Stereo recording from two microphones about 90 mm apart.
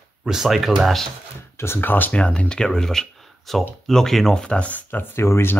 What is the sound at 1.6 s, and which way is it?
Speech, 25° left (ahead or behind).